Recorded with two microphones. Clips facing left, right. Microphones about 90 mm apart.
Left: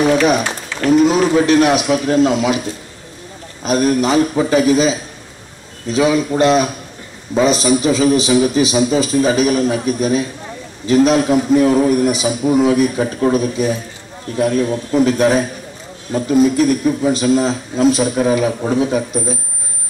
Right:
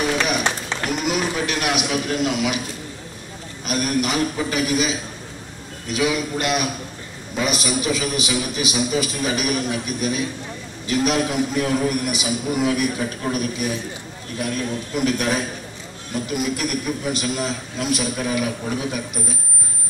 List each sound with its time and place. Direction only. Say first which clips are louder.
0.8 s a man's voice: left 12 dB; 30° left (ahead or behind)
3.6 s a man's voice: left 8 dB; 30° left (ahead or behind)